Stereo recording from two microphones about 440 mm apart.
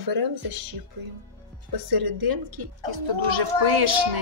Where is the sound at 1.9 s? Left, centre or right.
Right.